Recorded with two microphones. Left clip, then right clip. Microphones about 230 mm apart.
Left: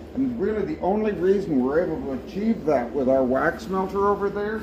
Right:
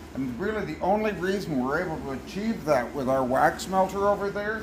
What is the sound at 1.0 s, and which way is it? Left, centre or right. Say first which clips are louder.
Speech: left 6 dB; right.